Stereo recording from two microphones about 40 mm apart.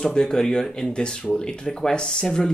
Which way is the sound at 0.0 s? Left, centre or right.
Centre.